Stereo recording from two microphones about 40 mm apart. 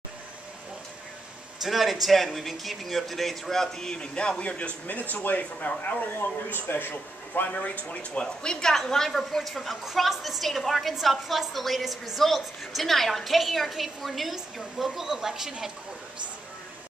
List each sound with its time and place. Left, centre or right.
1.6 s speech: centre; by 5.7 s left
6.5 s a man's voice: left
7.6 s a woman's voice: left; by 15.7 s centre